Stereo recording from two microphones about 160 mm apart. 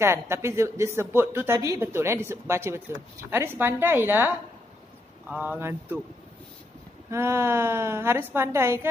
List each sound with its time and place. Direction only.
0.0 s a woman's voice: 15° right (ahead or behind)
5.3 s a woman's voice: 10° right (ahead or behind)
7.1 s a woman's voice: 15° right (ahead or behind)